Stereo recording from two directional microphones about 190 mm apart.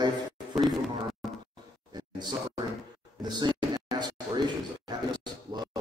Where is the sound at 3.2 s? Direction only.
25° right (ahead or behind).